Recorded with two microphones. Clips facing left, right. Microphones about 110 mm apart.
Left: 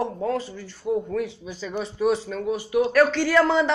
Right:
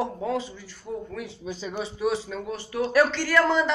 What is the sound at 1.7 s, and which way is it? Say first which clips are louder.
Speech: left 4 dB; 5° right (ahead or behind).